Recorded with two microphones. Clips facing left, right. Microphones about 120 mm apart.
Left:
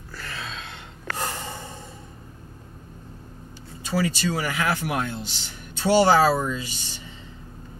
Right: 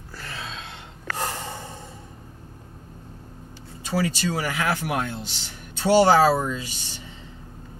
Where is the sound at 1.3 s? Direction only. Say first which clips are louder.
Right 1 dB; 30° right (ahead or behind).